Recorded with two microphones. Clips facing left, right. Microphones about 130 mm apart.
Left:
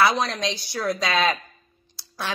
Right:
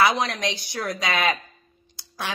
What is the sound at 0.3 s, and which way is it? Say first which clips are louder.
Speech: left 1 dB; 65° right (ahead or behind).